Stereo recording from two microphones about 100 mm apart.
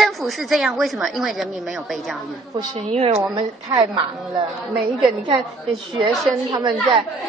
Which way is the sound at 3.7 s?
55° right (ahead or behind).